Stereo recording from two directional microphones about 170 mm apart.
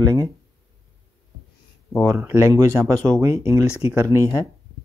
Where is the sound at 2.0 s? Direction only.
15° right (ahead or behind).